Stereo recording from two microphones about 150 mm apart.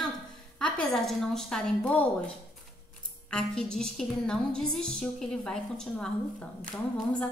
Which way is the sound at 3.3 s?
5° left (ahead or behind).